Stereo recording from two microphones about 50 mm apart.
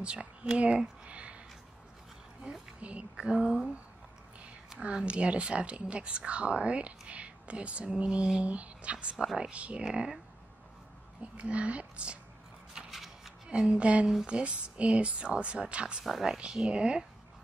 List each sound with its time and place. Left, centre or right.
0.0 s speech: right
0.6 s a sound: right
2.5 s a sound: right
3.2 s speech: centre
4.7 s speech: right
9.8 s speech: centre
11.3 s speech: right
12.7 s scissors: centre
13.5 s speech: right
16.0 s speech: centre
16.3 s speech: right